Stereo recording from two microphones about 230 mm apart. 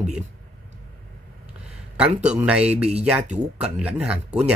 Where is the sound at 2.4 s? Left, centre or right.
Centre.